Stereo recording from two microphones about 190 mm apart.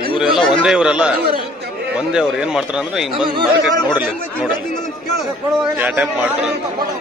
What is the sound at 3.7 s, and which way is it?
Speech, 20° left (ahead or behind).